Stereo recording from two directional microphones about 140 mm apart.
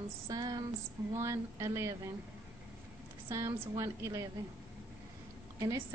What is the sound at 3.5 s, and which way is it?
Speech, 20° right (ahead or behind).